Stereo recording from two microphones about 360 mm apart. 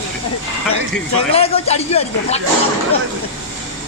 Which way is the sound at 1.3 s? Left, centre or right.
Centre.